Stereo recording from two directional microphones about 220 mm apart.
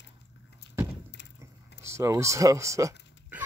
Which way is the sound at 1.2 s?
55° left (ahead or behind).